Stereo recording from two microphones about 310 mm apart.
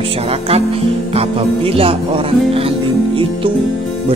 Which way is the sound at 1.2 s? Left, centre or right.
Centre.